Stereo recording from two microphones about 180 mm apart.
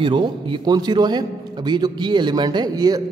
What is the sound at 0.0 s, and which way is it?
A man's voice, 25° right (ahead or behind).